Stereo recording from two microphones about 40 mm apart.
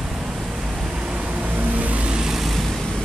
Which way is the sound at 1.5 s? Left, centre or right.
Right.